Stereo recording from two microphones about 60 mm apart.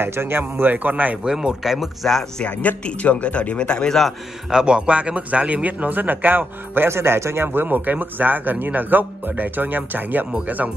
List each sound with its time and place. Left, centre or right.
0.0 s speech: right
1.2 s speech: centre
2.4 s a man's voice: left
4.5 s speech: centre